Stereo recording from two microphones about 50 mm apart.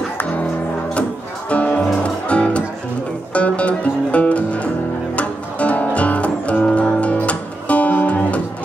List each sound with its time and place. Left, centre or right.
1.5 s music: left